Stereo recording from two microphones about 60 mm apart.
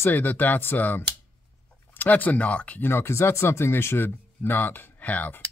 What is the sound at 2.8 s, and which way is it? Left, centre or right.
Speech, left.